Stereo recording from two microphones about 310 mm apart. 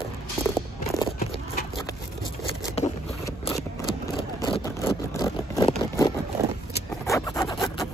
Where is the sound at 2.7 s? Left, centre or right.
Centre.